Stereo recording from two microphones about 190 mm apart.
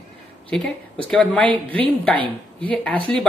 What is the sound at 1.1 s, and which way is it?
Speech, 5° left (ahead or behind).